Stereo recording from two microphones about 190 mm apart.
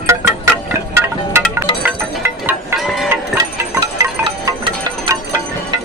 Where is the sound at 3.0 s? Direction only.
15° right (ahead or behind).